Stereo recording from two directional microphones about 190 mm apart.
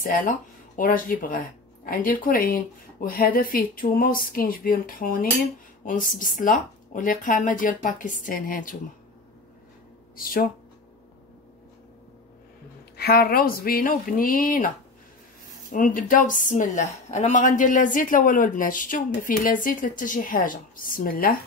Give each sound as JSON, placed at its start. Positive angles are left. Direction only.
{"t": 0.0, "sound": "a woman's voice", "side_deg": 45}
{"t": 10.1, "sound": "a woman's voice", "side_deg": 50}
{"t": 12.9, "sound": "a woman's voice", "side_deg": 55}
{"t": 15.7, "sound": "a woman's voice", "side_deg": 45}